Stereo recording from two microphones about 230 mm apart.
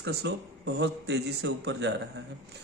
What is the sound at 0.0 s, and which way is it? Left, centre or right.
A man's voice, right.